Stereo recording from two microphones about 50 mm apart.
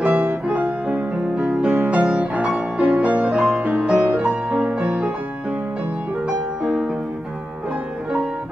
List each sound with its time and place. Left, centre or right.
0.0 s music: right
2.1 s music: right
4.7 s music: centre
6.2 s music: centre